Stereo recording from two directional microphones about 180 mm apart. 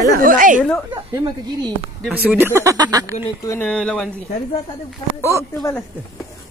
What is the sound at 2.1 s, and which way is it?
Speech, 10° right (ahead or behind).